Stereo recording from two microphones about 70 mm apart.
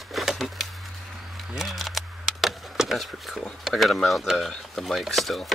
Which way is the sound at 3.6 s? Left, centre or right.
Centre.